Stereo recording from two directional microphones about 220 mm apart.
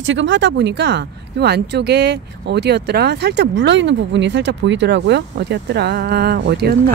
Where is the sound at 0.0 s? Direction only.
60° right (ahead or behind).